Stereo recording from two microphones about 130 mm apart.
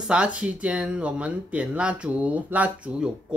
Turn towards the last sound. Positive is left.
turn(degrees=-10)  # may be behind; listen again after turning